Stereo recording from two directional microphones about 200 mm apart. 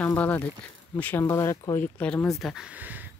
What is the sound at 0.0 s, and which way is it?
Speech, 10° left (ahead or behind).